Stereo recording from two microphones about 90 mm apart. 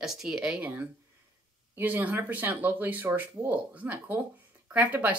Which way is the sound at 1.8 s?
20° right (ahead or behind).